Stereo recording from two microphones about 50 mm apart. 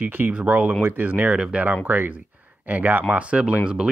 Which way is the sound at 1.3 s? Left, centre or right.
Centre.